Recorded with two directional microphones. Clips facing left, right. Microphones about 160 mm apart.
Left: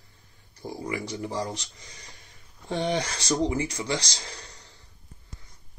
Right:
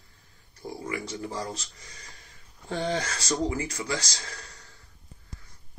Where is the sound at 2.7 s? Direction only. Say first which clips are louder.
Left 2 dB; 20° left (ahead or behind).